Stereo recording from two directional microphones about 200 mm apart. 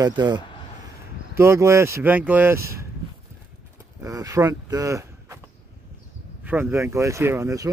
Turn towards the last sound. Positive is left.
turn(degrees=-15)  # may be behind; listen again after turning